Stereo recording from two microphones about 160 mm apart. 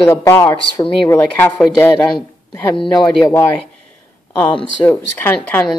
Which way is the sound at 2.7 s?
30° left (ahead or behind).